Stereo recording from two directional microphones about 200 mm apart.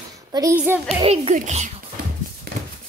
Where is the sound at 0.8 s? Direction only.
30° right (ahead or behind).